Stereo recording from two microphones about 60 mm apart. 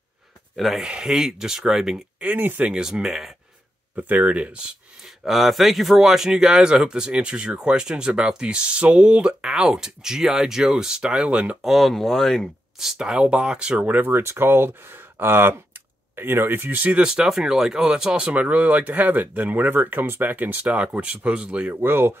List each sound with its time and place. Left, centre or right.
0.7 s speech: centre
2.1 s speech: right
2.7 s speech: centre
3.9 s speech: right
11.6 s speech: centre
12.7 s speech: centre; by 14.2 s right
14.2 s speech: right
17.0 s speech: centre
18.3 s speech: right
21.7 s speech: right